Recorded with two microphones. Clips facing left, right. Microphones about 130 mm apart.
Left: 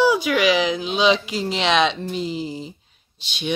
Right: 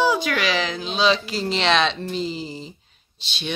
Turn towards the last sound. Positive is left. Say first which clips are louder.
# left 4 dB
turn(degrees=10)  # may be behind; listen again after turning